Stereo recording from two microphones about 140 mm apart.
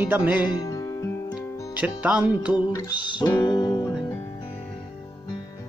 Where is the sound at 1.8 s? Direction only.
10° right (ahead or behind).